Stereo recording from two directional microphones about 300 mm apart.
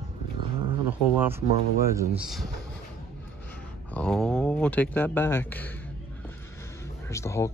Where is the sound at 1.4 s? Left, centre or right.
Centre.